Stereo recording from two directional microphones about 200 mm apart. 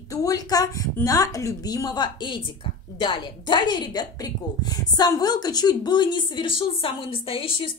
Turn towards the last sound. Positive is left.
turn(degrees=25)  # may be behind; listen again after turning